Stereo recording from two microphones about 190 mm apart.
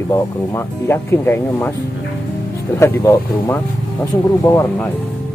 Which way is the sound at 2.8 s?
15° left (ahead or behind).